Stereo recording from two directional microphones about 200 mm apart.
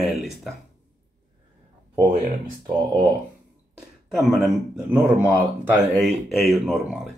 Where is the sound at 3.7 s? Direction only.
Centre (ahead or behind).